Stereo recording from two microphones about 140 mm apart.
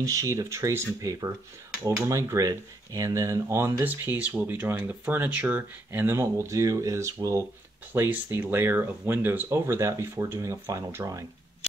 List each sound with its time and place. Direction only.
0.0 s speech: 25° right (ahead or behind)